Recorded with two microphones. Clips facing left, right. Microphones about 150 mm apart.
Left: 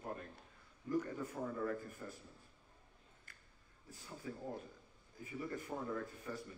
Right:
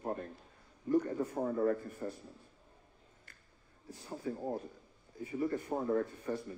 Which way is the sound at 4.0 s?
40° right (ahead or behind).